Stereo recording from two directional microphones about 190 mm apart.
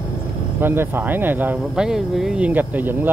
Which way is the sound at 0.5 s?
10° right (ahead or behind).